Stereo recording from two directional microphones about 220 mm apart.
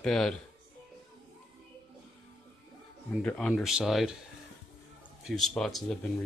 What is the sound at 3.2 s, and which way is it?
Speech, 5° left (ahead or behind).